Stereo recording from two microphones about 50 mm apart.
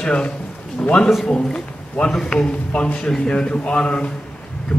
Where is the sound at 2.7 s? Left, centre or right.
Left.